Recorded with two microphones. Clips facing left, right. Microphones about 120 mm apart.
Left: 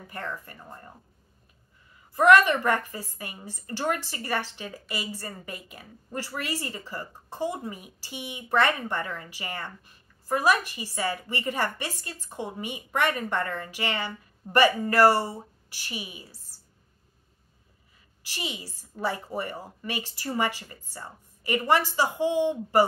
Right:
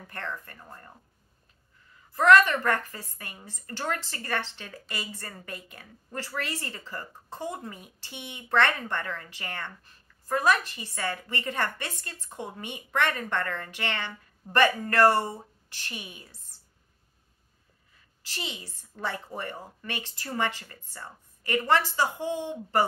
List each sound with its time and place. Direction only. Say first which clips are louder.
0.0 s a woman's voice: left 1 dB; 10° left (ahead or behind)
2.1 s a woman's voice: left 1 dB; 10° left (ahead or behind)
18.2 s a woman's voice: left 2 dB; 10° left (ahead or behind)